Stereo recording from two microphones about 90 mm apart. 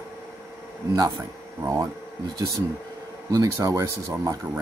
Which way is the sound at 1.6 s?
35° right (ahead or behind).